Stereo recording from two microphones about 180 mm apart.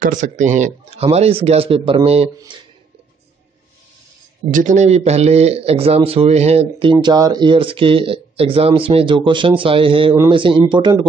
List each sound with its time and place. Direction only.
0.0 s speech: 45° right (ahead or behind)
4.5 s speech: 45° right (ahead or behind); by 11.1 s 25° right (ahead or behind)